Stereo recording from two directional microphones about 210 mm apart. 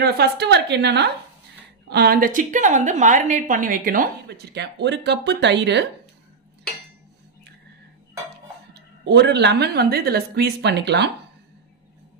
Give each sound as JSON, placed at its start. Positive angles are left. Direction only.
{"t": 0.0, "sound": "a woman's voice", "side_deg": -50}
{"t": 9.0, "sound": "a woman's voice", "side_deg": -55}